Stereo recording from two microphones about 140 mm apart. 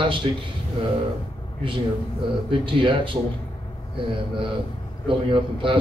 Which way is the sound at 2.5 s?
35° right (ahead or behind).